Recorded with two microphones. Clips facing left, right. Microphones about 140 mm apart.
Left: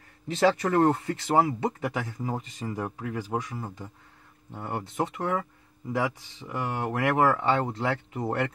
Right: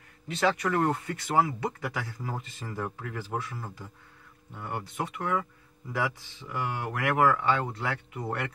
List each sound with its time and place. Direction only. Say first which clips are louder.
0.4 s speech: left 4 dB; 30° left (ahead or behind)
4.5 s speech: left 3 dB; 25° left (ahead or behind)